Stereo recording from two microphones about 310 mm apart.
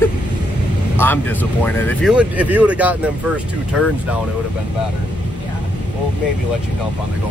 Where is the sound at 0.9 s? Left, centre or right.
Centre.